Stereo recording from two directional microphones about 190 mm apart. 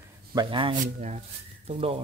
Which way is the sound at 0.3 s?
25° right (ahead or behind).